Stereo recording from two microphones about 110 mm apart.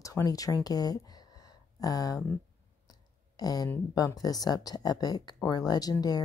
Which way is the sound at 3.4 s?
35° left (ahead or behind).